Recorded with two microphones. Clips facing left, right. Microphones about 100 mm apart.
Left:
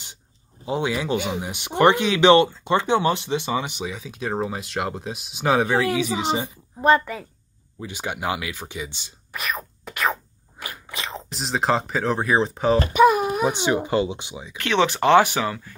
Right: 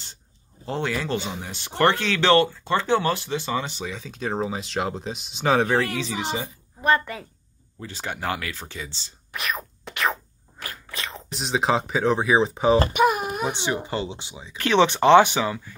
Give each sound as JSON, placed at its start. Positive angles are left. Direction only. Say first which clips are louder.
{"t": 0.7, "sound": "speech", "louder": "left 3 dB", "side_deg": 10}
{"t": 7.8, "sound": "speech", "louder": "left 2 dB", "side_deg": 15}
{"t": 9.3, "sound": "a sound", "louder": "left 1 dB", "side_deg": 0}
{"t": 10.6, "sound": "biting", "louder": "left 2 dB", "side_deg": 15}
{"t": 11.2, "sound": "speech", "louder": "even", "side_deg": 0}
{"t": 12.9, "sound": "baby cry", "louder": "left 5 dB", "side_deg": 35}
{"t": 13.5, "sound": "speech", "louder": "left 5 dB", "side_deg": 20}
{"t": 14.6, "sound": "speech", "louder": "right 2 dB", "side_deg": -30}